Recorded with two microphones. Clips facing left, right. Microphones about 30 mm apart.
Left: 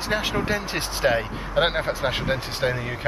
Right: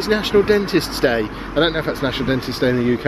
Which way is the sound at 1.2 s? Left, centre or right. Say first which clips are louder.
Right 4 dB; centre.